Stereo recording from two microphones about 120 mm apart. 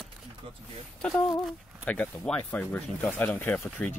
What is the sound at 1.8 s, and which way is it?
Speech, 10° left (ahead or behind).